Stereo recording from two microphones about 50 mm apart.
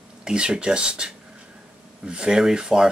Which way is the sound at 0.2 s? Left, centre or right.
Centre.